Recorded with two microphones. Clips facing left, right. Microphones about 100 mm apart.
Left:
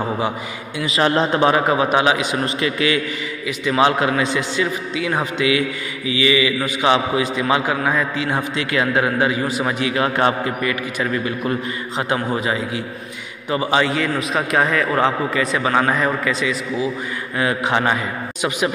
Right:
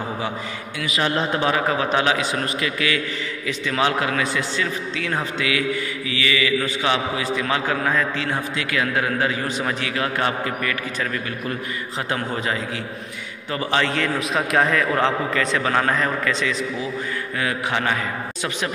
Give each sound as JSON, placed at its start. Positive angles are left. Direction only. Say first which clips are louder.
{"t": 0.8, "sound": "a man's voice", "louder": "left 5 dB", "side_deg": 30}
{"t": 8.5, "sound": "a man's voice", "louder": "left 5 dB", "side_deg": 25}
{"t": 17.4, "sound": "a man's voice", "louder": "left 6 dB", "side_deg": 25}